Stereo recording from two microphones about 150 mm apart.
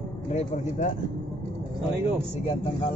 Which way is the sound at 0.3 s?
55° left (ahead or behind).